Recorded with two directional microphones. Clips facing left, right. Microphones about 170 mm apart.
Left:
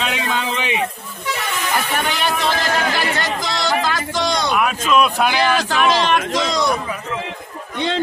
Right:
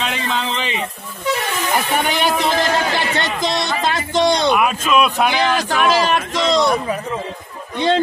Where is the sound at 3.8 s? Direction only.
25° right (ahead or behind).